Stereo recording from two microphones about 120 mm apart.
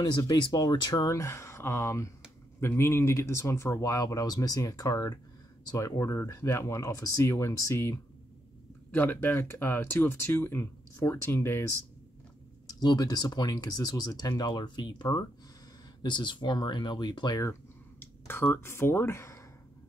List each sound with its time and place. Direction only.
0.0 s speech: 30° left (ahead or behind)
8.9 s speech: 15° left (ahead or behind)
12.6 s speech: 35° left (ahead or behind)
17.4 s speech: 20° left (ahead or behind)